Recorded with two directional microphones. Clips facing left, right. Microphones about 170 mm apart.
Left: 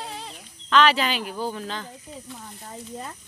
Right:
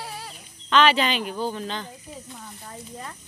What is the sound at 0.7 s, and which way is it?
Speech, centre (ahead or behind).